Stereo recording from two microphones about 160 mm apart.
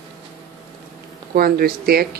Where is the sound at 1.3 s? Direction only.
70° right (ahead or behind).